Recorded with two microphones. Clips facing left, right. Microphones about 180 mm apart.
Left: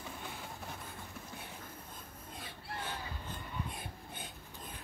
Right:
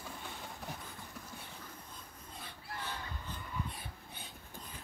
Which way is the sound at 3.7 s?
50° left (ahead or behind).